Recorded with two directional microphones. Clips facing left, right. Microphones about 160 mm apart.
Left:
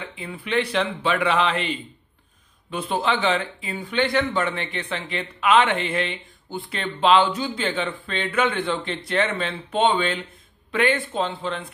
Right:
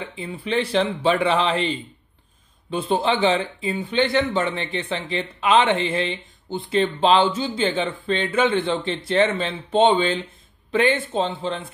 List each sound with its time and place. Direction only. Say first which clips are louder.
0.3 s speech: right 2 dB; 30° right (ahead or behind)